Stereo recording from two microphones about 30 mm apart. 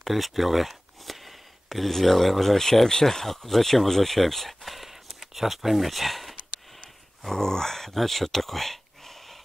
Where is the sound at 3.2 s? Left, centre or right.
Centre.